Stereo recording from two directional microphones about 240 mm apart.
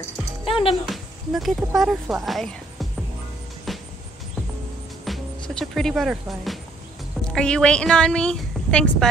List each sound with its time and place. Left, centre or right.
0.5 s music: left
0.8 s speech: centre
3.7 s music: centre
5.0 s music: centre
7.3 s a woman's voice: centre